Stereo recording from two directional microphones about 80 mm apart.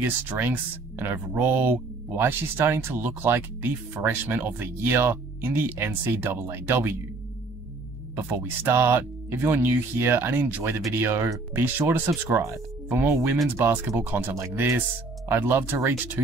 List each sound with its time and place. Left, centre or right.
0.0 s speech: right
8.2 s speech: right
12.3 s speech: right